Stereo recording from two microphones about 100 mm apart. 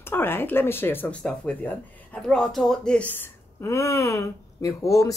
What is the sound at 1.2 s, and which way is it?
Speech, 10° left (ahead or behind).